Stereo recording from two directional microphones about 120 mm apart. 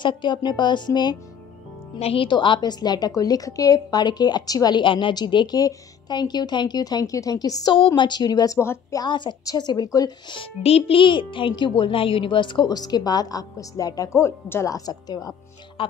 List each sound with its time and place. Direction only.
0.0 s a woman's voice: 40° left (ahead or behind)
2.0 s a woman's voice: 50° left (ahead or behind); by 7.7 s 30° left (ahead or behind)
7.7 s a woman's voice: 45° left (ahead or behind); by 9.0 s 25° left (ahead or behind)
9.0 s a woman's voice: 40° left (ahead or behind)